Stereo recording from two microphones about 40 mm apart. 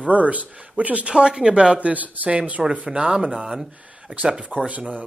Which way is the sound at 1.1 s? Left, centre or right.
Right.